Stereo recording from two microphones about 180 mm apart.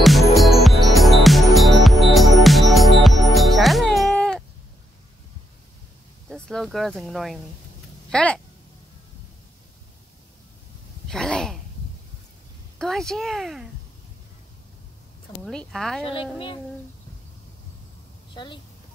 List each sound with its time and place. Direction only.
0.4 s music: centre (ahead or behind)
6.2 s a sound: centre (ahead or behind)
8.1 s speech: 5° left (ahead or behind)
11.1 s a sound: 5° left (ahead or behind)
12.7 s speech: centre (ahead or behind)
15.4 s speech: centre (ahead or behind)
16.0 s a woman's voice: 30° left (ahead or behind)
18.3 s speech: 25° left (ahead or behind)